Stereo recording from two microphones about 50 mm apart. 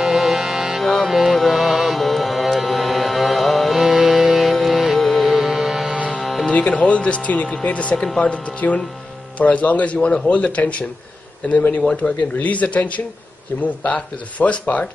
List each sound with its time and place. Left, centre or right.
0.0 s music: centre
6.5 s speech: left
7.9 s speech: centre
8.2 s speech: left